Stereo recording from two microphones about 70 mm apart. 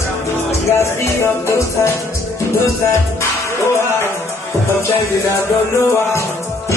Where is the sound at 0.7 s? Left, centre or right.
Left.